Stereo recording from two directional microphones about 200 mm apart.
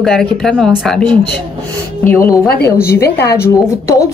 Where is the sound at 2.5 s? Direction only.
50° left (ahead or behind).